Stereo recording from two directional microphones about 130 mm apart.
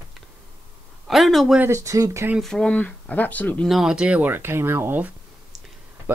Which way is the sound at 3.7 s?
5° right (ahead or behind).